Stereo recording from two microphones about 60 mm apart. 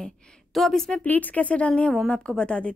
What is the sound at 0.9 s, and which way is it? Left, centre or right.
A woman's voice, left.